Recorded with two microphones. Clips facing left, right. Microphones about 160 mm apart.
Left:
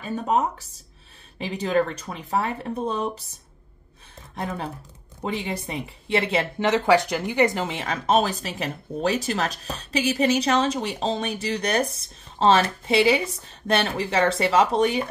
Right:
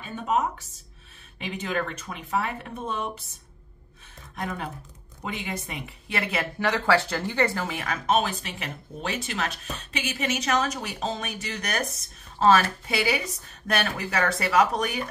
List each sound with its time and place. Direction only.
0.0 s speech: 35° left (ahead or behind)
4.4 s speech: 30° left (ahead or behind)